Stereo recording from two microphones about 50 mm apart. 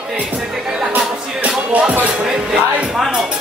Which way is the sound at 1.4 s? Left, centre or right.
Right.